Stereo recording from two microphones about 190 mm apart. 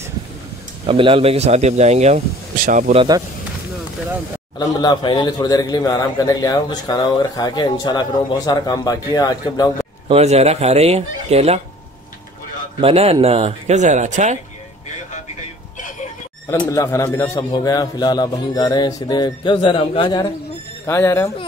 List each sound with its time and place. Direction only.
0.8 s speech: 30° right (ahead or behind)
3.0 s speech: 20° right (ahead or behind)
4.6 s a man's voice: 20° left (ahead or behind)
10.0 s speech: 35° right (ahead or behind)
12.8 s speech: 30° right (ahead or behind)
16.4 s a man's voice: 15° left (ahead or behind)
20.8 s speech: 15° left (ahead or behind)